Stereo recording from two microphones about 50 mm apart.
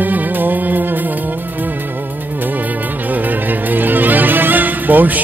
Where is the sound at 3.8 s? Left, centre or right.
Right.